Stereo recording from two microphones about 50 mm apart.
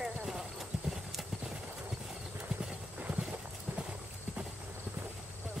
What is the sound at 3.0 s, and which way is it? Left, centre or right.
Clip-clop, right.